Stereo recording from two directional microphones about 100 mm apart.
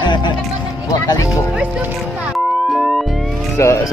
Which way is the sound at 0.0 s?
50° left (ahead or behind).